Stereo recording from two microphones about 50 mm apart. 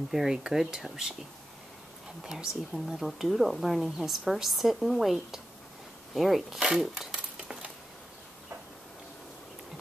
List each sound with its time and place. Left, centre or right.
0.1 s speech: centre
2.2 s speech: centre
7.3 s a sound: centre